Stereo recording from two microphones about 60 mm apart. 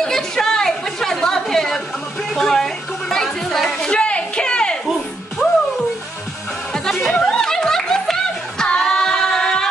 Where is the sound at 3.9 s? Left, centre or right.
Centre.